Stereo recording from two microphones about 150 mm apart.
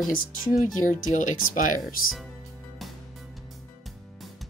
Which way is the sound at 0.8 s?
60° left (ahead or behind).